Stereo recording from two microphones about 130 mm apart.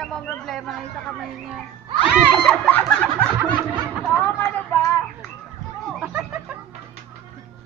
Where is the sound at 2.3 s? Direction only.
Centre (ahead or behind).